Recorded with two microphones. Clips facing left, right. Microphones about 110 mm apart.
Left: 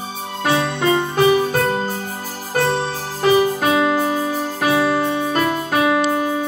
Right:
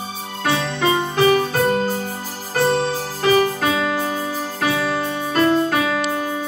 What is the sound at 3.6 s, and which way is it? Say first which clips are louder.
Music: left 4 dB; 20° left (ahead or behind).